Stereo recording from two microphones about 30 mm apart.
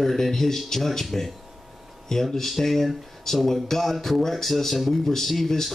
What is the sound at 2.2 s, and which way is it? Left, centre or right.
Speech, centre.